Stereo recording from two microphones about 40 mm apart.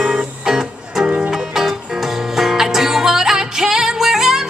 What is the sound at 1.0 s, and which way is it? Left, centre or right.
Music, right.